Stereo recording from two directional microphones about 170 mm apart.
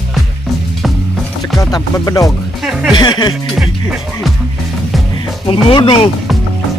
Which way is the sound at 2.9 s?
25° left (ahead or behind).